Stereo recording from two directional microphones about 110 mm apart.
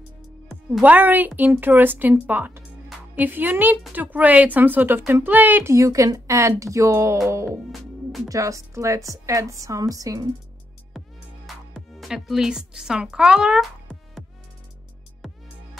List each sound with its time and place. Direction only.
0.8 s a woman's voice: 15° right (ahead or behind); by 10.3 s 30° right (ahead or behind)
11.4 s speech: centre (ahead or behind)